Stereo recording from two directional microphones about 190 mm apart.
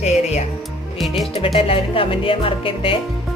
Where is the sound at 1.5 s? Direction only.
30° left (ahead or behind).